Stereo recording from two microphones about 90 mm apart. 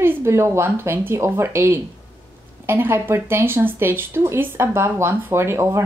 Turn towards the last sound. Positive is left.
turn(degrees=-30)  # may be behind; listen again after turning